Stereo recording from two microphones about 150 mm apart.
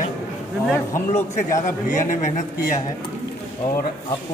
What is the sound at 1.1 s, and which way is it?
A man's voice, 55° left (ahead or behind).